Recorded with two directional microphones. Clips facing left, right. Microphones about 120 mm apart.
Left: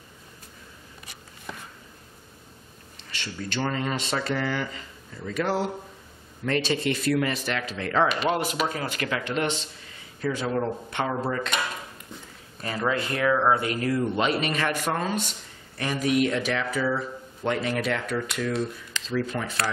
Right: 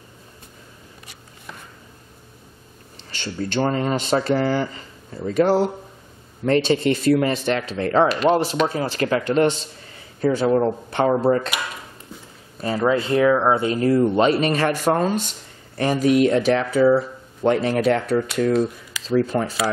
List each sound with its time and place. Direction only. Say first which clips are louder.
3.1 s speech: right 7 dB; 30° right (ahead or behind)
12.6 s speech: right 7 dB; 25° right (ahead or behind)